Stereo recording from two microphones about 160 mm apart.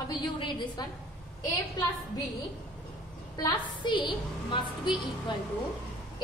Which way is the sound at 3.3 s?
25° left (ahead or behind).